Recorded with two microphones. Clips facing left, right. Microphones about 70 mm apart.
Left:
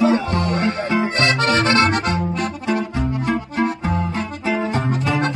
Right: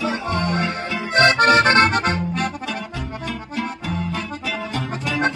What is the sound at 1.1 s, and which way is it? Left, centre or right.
Accordion, right.